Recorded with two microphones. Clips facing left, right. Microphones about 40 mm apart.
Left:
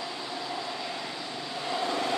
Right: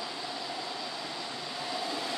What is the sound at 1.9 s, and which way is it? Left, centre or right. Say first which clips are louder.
Vehicle: left 6 dB; left.